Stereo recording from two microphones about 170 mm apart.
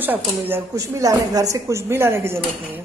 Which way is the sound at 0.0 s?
10° right (ahead or behind).